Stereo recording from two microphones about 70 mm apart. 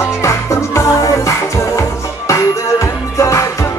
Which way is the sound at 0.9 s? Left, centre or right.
Left.